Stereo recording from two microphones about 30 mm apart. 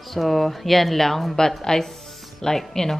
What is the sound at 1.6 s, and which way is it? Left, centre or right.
Speech, left.